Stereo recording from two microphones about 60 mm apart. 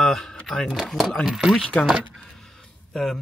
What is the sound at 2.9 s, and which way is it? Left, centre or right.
Speech, centre.